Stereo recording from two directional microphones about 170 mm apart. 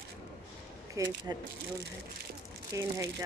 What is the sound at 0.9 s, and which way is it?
Speech, 20° right (ahead or behind).